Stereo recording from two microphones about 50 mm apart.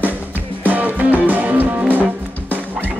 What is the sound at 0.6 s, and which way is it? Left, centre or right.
Music, right.